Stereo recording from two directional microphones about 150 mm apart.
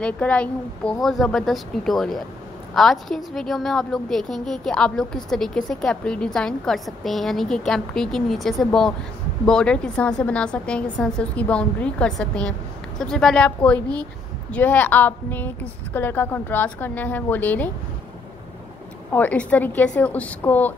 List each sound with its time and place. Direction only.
0.0 s a woman's voice: 10° left (ahead or behind)
19.1 s a woman's voice: 10° left (ahead or behind)